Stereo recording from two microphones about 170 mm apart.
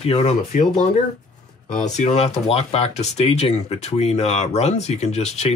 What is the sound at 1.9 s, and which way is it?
Speech, 40° left (ahead or behind).